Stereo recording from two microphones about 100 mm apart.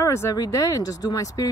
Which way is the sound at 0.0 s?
30° left (ahead or behind).